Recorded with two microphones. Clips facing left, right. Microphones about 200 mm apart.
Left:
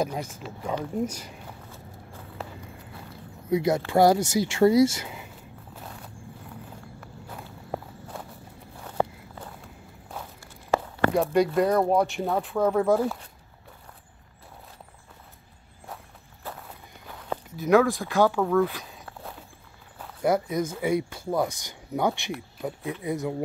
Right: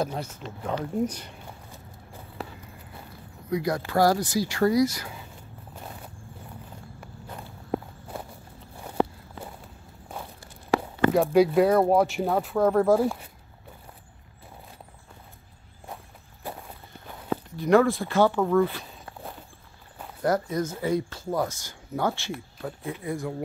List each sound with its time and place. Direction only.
0.0 s speech: 10° left (ahead or behind)
3.4 s speech: 25° left (ahead or behind)
11.1 s speech: 5° right (ahead or behind)
16.5 s walk: 15° right (ahead or behind)
17.6 s speech: 5° left (ahead or behind)
18.4 s walk: centre (ahead or behind)
20.2 s speech: 10° left (ahead or behind)